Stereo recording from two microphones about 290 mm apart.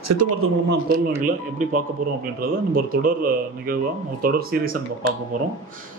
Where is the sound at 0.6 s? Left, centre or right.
Right.